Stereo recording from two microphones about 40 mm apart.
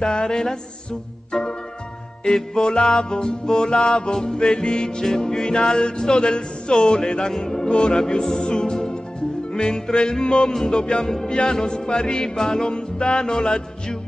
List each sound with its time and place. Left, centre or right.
0.0 s music: centre
7.7 s music: left